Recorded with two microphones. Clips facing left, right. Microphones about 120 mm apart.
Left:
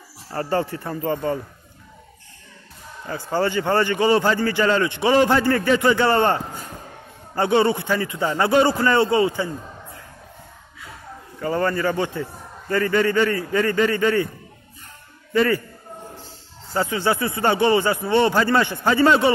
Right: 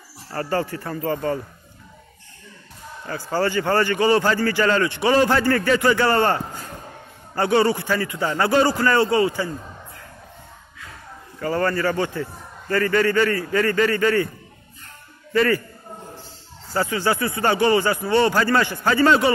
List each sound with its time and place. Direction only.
0.3 s speech: 20° left (ahead or behind)
3.1 s speech: 20° left (ahead or behind)
11.4 s speech: 15° left (ahead or behind)
15.3 s speech: 20° left (ahead or behind)
16.7 s speech: 20° left (ahead or behind)